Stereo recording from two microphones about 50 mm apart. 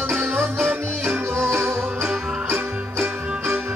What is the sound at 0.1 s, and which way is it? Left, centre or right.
Music, right.